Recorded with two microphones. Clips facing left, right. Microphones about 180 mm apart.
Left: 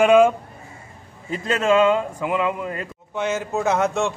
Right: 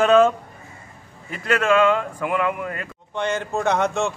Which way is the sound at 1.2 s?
25° left (ahead or behind).